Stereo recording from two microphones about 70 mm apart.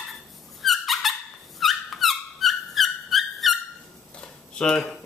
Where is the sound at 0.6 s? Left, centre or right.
Centre.